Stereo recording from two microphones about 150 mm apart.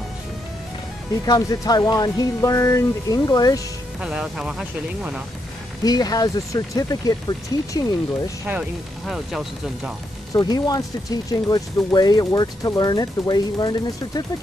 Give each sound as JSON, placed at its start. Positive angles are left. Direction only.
{"t": 1.2, "sound": "speech", "side_deg": 25}
{"t": 4.0, "sound": "speech", "side_deg": -5}
{"t": 5.9, "sound": "speech", "side_deg": 25}
{"t": 8.5, "sound": "speech", "side_deg": -5}
{"t": 10.3, "sound": "speech", "side_deg": 25}